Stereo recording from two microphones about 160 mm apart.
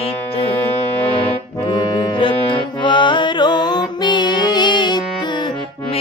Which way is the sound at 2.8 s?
30° left (ahead or behind).